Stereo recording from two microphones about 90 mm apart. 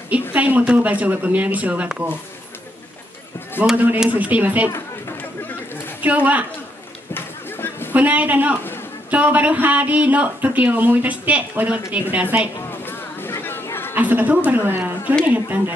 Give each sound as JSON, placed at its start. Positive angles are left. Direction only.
{"t": 0.3, "sound": "speech", "side_deg": -15}
{"t": 3.7, "sound": "speech", "side_deg": -15}
{"t": 6.0, "sound": "speech", "side_deg": -15}
{"t": 7.2, "sound": "a sound", "side_deg": 25}
{"t": 7.9, "sound": "speech", "side_deg": -15}
{"t": 12.8, "sound": "a sound", "side_deg": 25}
{"t": 13.9, "sound": "a woman's voice", "side_deg": -20}